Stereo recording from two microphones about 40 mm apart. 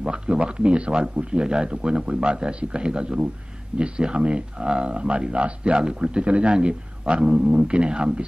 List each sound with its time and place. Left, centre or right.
0.0 s speech: right